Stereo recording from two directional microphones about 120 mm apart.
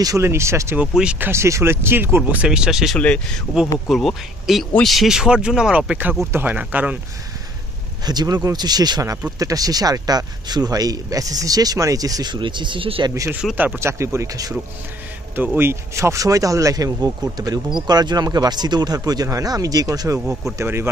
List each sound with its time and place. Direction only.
0.0 s speech: 25° right (ahead or behind)
0.7 s speech: 10° right (ahead or behind)
1.3 s speech: 20° right (ahead or behind)
8.0 s a man's voice: 35° right (ahead or behind)
13.1 s speech: 25° right (ahead or behind)
13.4 s speech: 5° right (ahead or behind)
13.7 s speech: 25° right (ahead or behind)
15.3 s speech: 15° right (ahead or behind)